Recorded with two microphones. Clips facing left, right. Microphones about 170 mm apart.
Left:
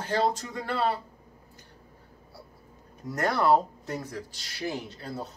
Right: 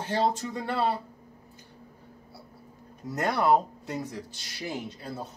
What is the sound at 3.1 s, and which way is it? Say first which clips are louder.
Speech: even; 20° right (ahead or behind).